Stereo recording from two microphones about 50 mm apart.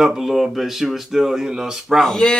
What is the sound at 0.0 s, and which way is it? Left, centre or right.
Speech, centre.